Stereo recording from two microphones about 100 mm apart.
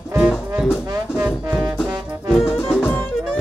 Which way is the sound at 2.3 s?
5° right (ahead or behind).